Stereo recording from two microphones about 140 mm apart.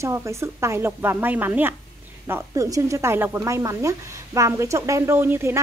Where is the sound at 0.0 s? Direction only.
20° right (ahead or behind).